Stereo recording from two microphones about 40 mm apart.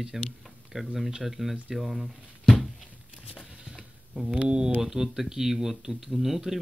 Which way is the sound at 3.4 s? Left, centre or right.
Centre.